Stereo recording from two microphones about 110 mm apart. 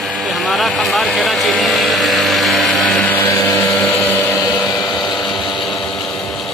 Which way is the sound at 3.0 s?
15° left (ahead or behind).